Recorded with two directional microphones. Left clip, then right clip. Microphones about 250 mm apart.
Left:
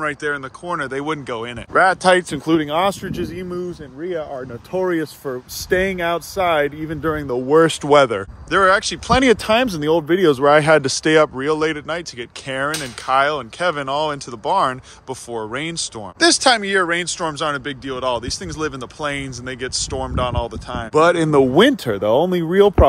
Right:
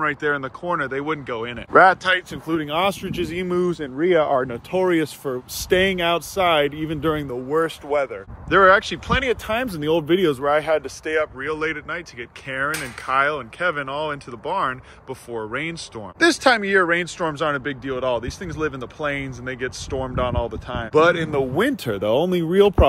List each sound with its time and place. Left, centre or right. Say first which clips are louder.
0.0 s speech: right 1 dB; centre
2.3 s speech: left 7 dB; left
2.6 s speech: left 3 dB; centre
4.0 s speech: right 8 dB; centre
7.4 s speech: left 9 dB; left
8.5 s speech: right 1 dB; centre
9.3 s speech: left 7 dB; left
9.7 s speech: left 3 dB; centre
10.4 s speech: left 7 dB; left
11.1 s speech: left 6 dB; centre
21.3 s speech: left 8 dB; left
21.8 s speech: left 4 dB; centre